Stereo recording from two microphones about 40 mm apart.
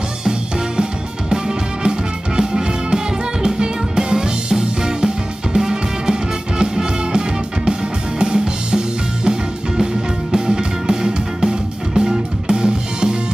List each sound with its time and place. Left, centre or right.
1.3 s music: right